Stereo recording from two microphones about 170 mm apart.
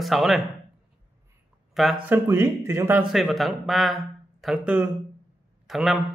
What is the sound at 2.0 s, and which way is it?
Speech, 15° right (ahead or behind).